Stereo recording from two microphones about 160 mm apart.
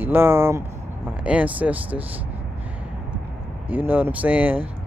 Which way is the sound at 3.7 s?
10° right (ahead or behind).